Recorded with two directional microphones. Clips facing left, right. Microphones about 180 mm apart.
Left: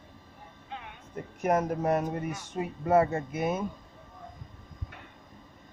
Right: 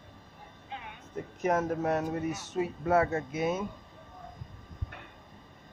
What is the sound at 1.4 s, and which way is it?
Speech, 10° left (ahead or behind).